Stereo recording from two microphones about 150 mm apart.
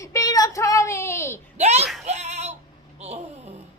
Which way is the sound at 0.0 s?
20° left (ahead or behind).